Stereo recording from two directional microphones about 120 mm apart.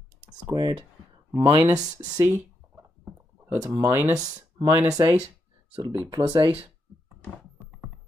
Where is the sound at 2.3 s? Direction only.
25° right (ahead or behind).